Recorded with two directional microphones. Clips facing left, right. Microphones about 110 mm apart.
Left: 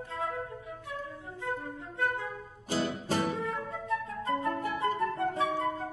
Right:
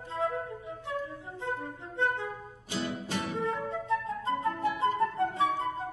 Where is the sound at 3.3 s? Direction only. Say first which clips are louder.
Right 3 dB; 25° right (ahead or behind).